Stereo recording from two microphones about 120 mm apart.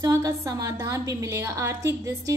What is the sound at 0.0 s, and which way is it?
A woman's voice, 30° right (ahead or behind).